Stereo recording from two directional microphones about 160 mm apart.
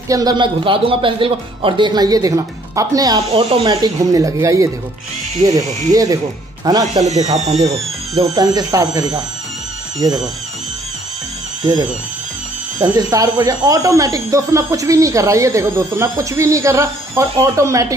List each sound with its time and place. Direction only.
0.1 s speech: 25° right (ahead or behind)
3.3 s speech: 35° right (ahead or behind)
3.6 s speech: 25° right (ahead or behind)
5.7 s speech: 50° right (ahead or behind)
6.6 s speech: 25° right (ahead or behind)
7.3 s speech: 45° right (ahead or behind)
8.4 s speech: 25° right (ahead or behind)
11.6 s speech: 30° right (ahead or behind)